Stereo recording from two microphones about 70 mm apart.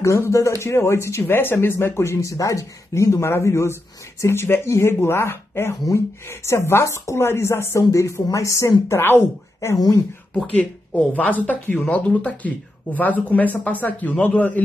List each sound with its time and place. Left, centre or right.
0.0 s speech: left
9.8 s speech: left
10.3 s speech: centre